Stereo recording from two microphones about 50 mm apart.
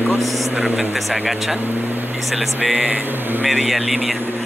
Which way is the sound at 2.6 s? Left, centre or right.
Centre.